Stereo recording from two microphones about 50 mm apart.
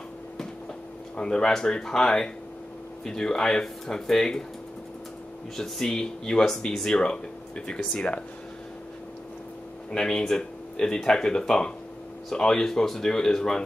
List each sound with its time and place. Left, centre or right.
1.1 s speech: centre
5.6 s speech: centre; by 8.2 s left
9.8 s speech: centre